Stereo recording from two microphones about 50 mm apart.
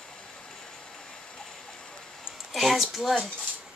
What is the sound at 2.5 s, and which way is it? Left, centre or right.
Speech, centre.